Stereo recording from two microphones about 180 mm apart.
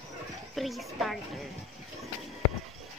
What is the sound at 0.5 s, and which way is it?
Speech, centre (ahead or behind).